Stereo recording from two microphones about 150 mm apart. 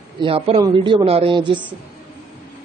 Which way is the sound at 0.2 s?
35° right (ahead or behind).